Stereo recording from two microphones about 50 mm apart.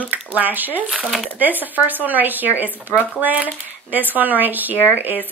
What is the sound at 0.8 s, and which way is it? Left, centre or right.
Speech, centre.